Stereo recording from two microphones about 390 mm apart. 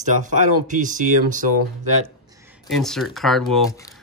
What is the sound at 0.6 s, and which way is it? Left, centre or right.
Speech, centre.